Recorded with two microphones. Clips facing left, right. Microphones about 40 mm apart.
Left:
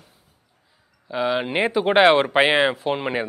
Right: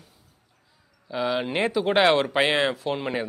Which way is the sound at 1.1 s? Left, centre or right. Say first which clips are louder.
Left 3 dB; centre.